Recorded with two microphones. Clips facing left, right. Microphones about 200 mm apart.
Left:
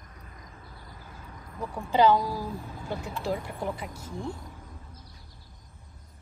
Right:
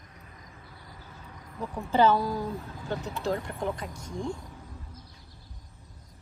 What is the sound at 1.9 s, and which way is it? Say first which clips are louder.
A woman's voice: left 1 dB; 15° left (ahead or behind).